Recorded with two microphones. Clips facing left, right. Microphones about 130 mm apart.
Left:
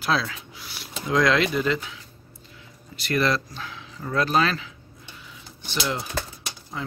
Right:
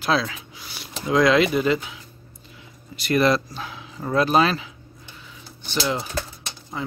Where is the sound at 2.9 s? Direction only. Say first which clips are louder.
Right 4 dB; 15° right (ahead or behind).